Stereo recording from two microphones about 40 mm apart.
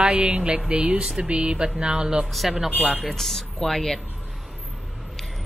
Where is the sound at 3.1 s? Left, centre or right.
Centre.